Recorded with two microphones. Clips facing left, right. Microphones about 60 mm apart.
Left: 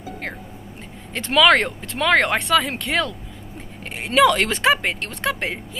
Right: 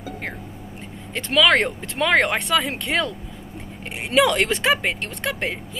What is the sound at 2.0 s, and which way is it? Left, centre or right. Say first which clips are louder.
Speech: left 1 dB; centre.